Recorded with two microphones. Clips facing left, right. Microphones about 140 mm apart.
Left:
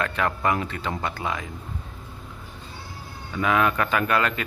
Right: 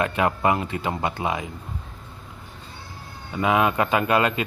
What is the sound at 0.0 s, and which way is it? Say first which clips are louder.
Speech: right 3 dB; 20° right (ahead or behind).